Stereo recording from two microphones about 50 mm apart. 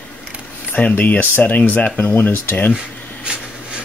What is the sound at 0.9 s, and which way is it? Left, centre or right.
Speech, left.